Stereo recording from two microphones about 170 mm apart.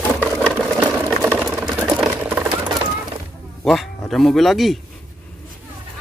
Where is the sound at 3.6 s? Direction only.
Centre (ahead or behind).